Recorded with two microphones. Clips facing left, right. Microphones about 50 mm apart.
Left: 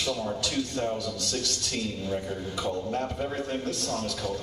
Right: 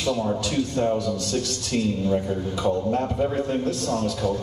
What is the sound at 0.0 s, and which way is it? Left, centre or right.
A man's voice, right.